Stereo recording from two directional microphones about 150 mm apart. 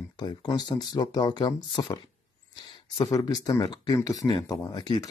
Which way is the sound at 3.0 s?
25° left (ahead or behind).